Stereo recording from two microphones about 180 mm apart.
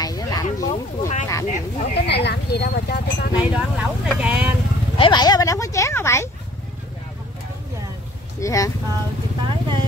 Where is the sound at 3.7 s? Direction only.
5° right (ahead or behind).